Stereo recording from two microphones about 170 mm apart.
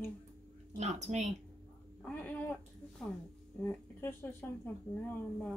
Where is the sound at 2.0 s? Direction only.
5° left (ahead or behind).